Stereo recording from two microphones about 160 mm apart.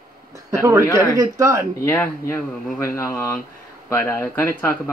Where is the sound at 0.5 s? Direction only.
15° right (ahead or behind).